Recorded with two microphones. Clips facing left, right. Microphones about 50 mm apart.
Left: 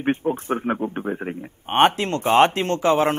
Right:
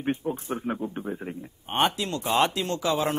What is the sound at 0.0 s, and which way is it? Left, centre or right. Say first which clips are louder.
A man's voice: left 6 dB; left.